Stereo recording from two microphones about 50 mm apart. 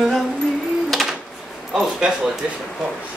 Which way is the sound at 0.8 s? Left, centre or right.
Centre.